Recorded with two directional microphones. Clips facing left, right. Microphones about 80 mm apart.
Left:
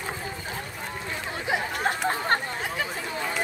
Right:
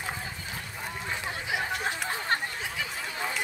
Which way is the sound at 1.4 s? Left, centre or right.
Left.